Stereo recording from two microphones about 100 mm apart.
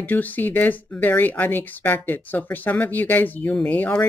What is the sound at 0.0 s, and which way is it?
Speech, 15° left (ahead or behind).